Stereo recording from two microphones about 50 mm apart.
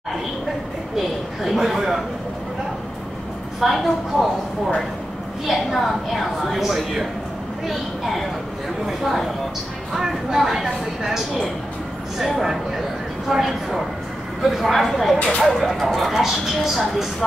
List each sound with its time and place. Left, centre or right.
0.9 s speech: centre
3.6 s speech: centre
5.5 s speech: centre